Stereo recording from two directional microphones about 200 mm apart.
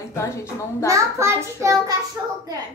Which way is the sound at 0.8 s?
15° right (ahead or behind).